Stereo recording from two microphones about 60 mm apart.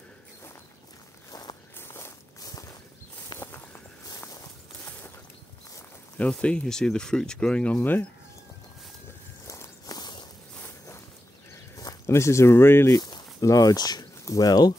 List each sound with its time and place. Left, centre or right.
1.3 s walk: left
1.8 s walk: left
2.4 s walk: left
3.3 s a sound: left
6.1 s speech: centre
7.8 s speech: left
9.9 s a sound: left
11.7 s a sound: left
12.1 s speech: left
12.9 s speech: left